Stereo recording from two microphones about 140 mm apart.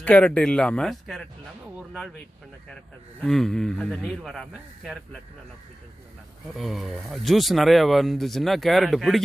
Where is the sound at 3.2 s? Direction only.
5° left (ahead or behind).